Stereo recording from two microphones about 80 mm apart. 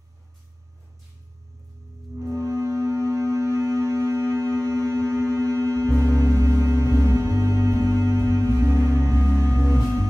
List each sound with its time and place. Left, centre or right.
2.1 s music: right